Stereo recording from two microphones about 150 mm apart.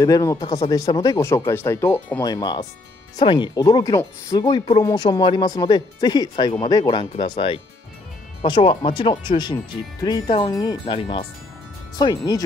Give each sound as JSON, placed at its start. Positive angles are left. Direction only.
{"t": 0.0, "sound": "speech", "side_deg": 20}
{"t": 2.2, "sound": "speech", "side_deg": 25}